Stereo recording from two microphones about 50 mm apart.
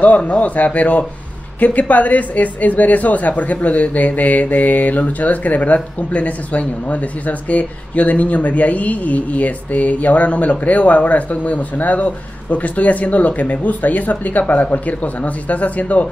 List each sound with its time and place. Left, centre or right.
0.0 s a man's voice: left